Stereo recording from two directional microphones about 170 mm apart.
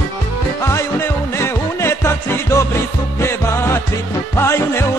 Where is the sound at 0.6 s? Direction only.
15° left (ahead or behind).